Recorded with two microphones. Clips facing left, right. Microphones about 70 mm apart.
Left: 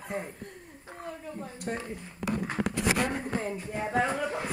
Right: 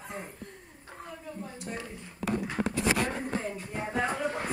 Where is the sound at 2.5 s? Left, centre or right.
Left.